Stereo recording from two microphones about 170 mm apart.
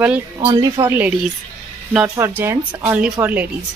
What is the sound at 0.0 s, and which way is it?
Speech, 10° right (ahead or behind).